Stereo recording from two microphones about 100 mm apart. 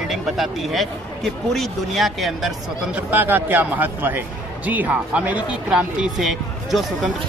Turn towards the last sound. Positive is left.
turn(degrees=0)  # may be behind; listen again after turning